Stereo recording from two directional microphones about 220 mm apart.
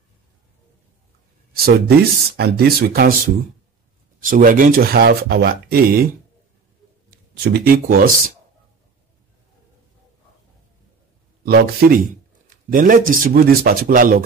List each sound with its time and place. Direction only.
1.6 s speech: 45° right (ahead or behind)
4.2 s speech: 40° right (ahead or behind)
7.4 s speech: 45° right (ahead or behind)
11.4 s speech: 45° right (ahead or behind)